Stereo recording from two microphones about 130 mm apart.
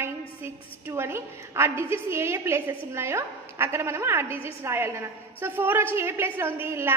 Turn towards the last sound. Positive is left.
turn(degrees=-20)  # may be behind; listen again after turning